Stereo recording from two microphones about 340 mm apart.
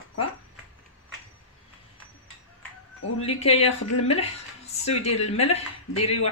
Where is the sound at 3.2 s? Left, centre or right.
Centre.